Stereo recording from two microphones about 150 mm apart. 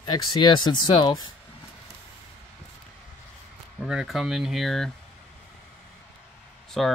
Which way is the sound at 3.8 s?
5° right (ahead or behind).